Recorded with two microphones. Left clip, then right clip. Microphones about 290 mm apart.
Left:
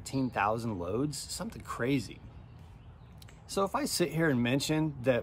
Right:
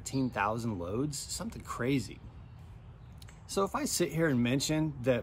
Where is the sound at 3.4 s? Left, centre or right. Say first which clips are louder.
Left 1 dB; centre.